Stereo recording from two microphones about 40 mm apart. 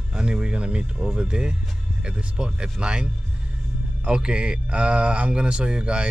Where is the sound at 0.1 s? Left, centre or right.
Centre.